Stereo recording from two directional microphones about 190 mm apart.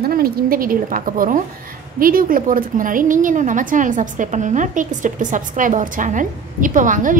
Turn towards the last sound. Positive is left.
turn(degrees=-45)  # may be behind; listen again after turning